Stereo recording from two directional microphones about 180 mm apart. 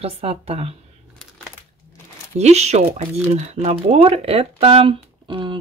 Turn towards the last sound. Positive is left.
turn(degrees=-30)  # may be behind; listen again after turning